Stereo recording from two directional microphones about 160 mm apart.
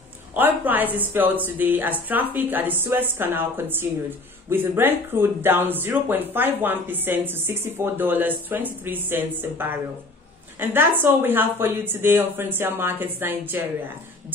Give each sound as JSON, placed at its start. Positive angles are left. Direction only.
{"t": 0.3, "sound": "speech", "side_deg": -10}